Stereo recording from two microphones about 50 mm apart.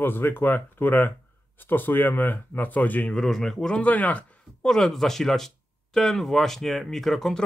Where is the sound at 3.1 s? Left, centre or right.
Centre.